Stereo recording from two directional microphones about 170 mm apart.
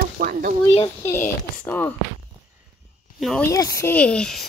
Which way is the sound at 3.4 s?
20° left (ahead or behind).